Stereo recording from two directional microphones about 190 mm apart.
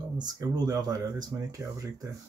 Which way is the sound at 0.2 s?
20° right (ahead or behind).